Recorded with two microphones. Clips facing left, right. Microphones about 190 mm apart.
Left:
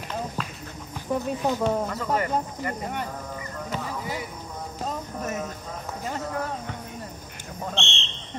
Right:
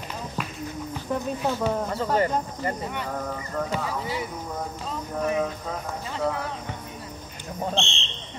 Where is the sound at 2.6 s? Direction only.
30° right (ahead or behind).